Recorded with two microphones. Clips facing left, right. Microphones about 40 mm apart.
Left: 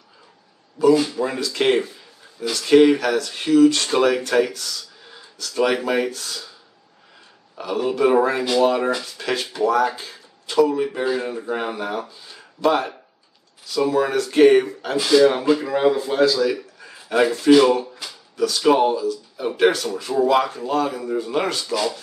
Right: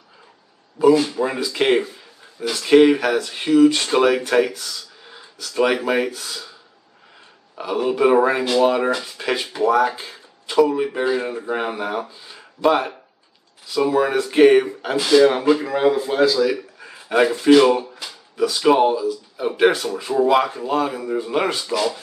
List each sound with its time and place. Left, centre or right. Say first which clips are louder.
0.7 s speech: right 1 dB; centre
7.5 s speech: right 1 dB; centre
16.8 s speech: right 1 dB; centre